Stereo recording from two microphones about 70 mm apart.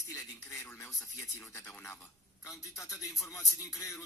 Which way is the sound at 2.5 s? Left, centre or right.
Left.